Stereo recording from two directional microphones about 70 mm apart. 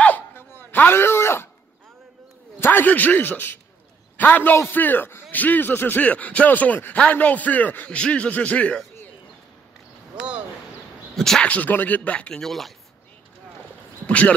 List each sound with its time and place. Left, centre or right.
0.3 s a sound: left
2.6 s speech: left
11.1 s speech: centre
11.4 s speech: left
12.4 s speech: centre
14.0 s speech: centre